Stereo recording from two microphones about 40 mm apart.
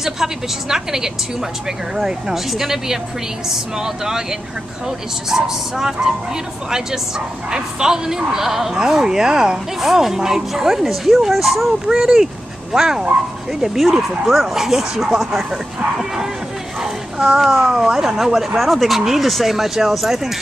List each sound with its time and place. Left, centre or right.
0.0 s speech: centre
9.8 s speech: centre
16.8 s a sound: centre
17.6 s speech: centre